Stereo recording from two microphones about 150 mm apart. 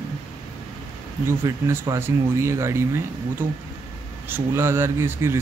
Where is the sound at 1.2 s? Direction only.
20° right (ahead or behind).